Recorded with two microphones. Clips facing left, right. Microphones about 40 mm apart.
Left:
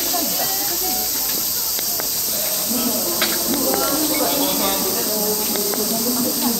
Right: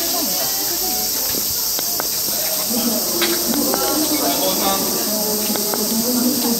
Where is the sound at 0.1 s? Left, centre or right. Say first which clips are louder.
Even; left.